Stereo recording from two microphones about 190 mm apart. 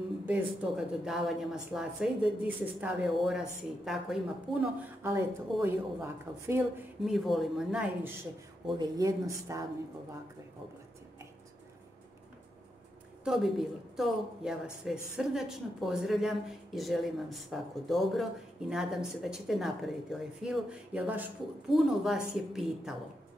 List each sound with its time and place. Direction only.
0.3 s a woman's voice: 5° right (ahead or behind)
7.1 s a woman's voice: centre (ahead or behind)
8.6 s speech: 20° right (ahead or behind)
13.2 s a woman's voice: centre (ahead or behind)